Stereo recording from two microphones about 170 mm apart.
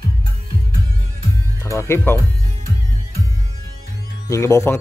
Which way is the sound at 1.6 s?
15° left (ahead or behind).